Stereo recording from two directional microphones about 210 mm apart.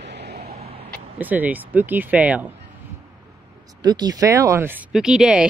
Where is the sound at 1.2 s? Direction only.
10° right (ahead or behind).